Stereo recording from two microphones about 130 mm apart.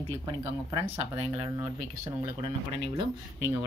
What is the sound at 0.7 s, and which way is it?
Speech, 45° right (ahead or behind).